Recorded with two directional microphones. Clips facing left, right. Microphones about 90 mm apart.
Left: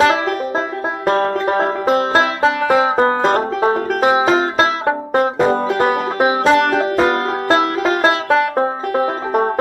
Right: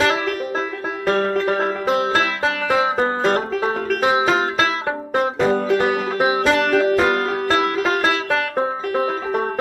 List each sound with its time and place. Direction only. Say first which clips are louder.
1.0 s music: left 2 dB; 35° left (ahead or behind)
5.1 s banjo: left 2 dB; 40° left (ahead or behind)
6.4 s music: left 3 dB; 25° left (ahead or behind)